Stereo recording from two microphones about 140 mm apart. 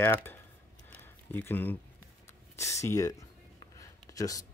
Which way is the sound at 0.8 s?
15° left (ahead or behind).